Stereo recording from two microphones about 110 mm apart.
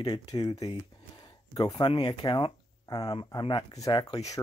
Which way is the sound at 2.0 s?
40° left (ahead or behind).